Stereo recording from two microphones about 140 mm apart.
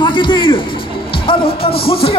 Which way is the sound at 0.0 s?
35° left (ahead or behind).